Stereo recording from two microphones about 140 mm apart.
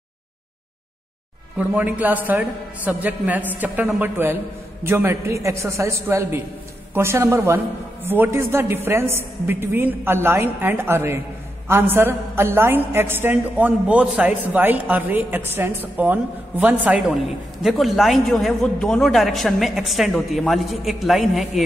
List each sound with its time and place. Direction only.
1.6 s a woman's voice: 10° right (ahead or behind)